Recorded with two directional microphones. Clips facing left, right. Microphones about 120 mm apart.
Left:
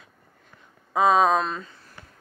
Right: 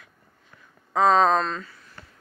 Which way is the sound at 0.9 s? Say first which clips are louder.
Even; 10° left (ahead or behind).